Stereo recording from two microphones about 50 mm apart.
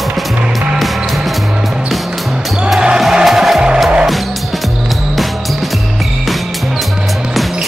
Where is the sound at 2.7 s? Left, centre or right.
Centre.